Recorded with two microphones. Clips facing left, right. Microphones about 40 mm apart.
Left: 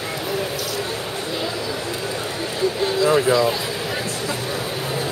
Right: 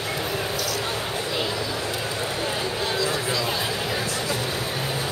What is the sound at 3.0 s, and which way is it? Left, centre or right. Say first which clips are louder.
Speech: left 9 dB; left.